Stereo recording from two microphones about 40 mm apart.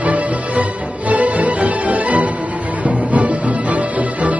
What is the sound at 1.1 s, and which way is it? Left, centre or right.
Music, right.